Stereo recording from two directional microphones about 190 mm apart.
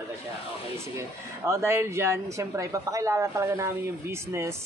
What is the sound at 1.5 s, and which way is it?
Speech, 15° right (ahead or behind).